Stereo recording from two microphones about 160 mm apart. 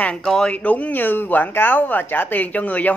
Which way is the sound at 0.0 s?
5° left (ahead or behind).